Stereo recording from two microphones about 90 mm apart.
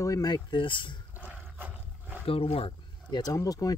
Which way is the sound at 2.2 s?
90° left.